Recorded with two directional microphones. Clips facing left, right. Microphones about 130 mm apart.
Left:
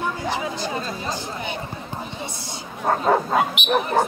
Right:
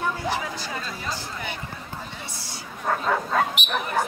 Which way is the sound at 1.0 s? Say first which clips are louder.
Left 4 dB; 20° left (ahead or behind).